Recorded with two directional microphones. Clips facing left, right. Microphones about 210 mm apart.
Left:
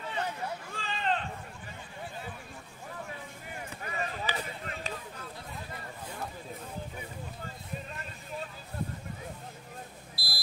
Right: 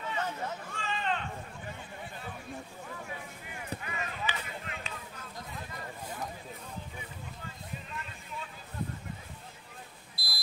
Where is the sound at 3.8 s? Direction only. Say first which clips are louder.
Left 6 dB; 35° left (ahead or behind).